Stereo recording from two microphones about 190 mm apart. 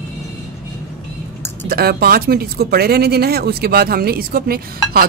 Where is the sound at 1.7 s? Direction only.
55° right (ahead or behind).